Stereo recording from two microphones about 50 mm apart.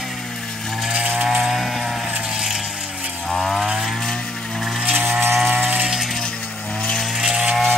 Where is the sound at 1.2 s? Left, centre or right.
Centre.